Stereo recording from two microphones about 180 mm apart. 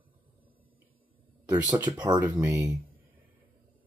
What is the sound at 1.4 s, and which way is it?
Speech, 15° right (ahead or behind).